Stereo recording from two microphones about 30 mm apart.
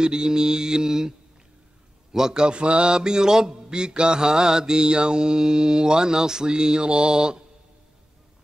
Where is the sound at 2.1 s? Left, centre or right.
Centre.